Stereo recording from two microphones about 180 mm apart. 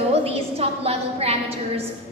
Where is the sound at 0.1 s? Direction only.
35° right (ahead or behind).